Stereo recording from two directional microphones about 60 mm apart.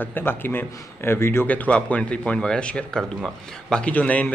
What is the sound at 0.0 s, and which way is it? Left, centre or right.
Speech, left.